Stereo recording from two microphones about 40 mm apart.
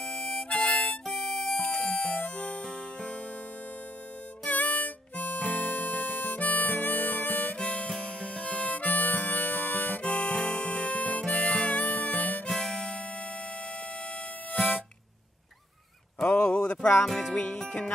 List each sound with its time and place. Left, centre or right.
0.0 s harmonica: left
0.6 s harmonica: left
1.0 s music: centre
2.1 s music: left
2.6 s music: left
4.5 s harmonica: left
7.5 s harmonica: left
10.0 s harmonica: left
12.4 s harmonica: centre
16.3 s a sound: left
17.0 s music: centre
17.3 s music: centre